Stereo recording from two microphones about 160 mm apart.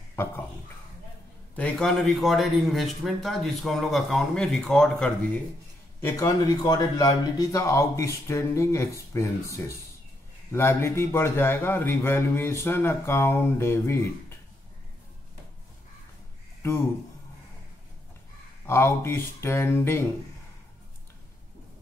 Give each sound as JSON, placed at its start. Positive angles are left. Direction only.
{"t": 0.2, "sound": "speech", "side_deg": 15}
{"t": 1.5, "sound": "a man's voice", "side_deg": 10}
{"t": 5.9, "sound": "speech", "side_deg": 20}
{"t": 18.7, "sound": "speech", "side_deg": 15}